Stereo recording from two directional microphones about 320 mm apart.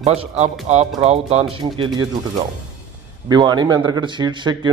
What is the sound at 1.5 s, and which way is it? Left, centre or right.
Speech, centre.